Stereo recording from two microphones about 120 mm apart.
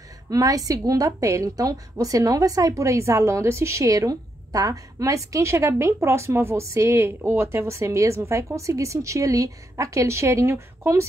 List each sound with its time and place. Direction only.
0.3 s a woman's voice: 30° right (ahead or behind)